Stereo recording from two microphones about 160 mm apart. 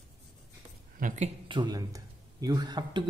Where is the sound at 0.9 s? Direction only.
50° right (ahead or behind).